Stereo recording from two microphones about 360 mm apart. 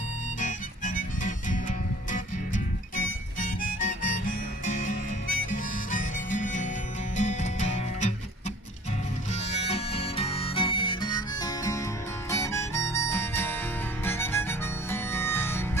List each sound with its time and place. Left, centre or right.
0.4 s harmonica: left
7.2 s music: centre
9.3 s music: centre
12.3 s harmonica: centre